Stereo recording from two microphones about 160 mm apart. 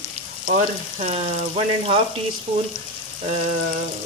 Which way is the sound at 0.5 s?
45° right (ahead or behind).